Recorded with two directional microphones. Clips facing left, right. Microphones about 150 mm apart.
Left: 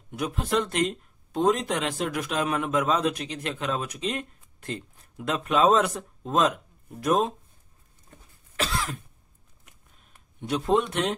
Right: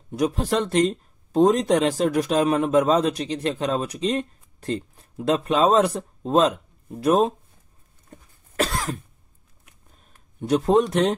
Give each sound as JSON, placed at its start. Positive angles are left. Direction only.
{"t": 0.1, "sound": "speech", "side_deg": -35}
{"t": 8.5, "sound": "cough", "side_deg": -45}
{"t": 9.9, "sound": "a sound", "side_deg": -40}